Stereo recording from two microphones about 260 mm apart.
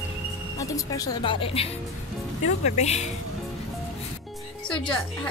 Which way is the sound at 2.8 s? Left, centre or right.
Left.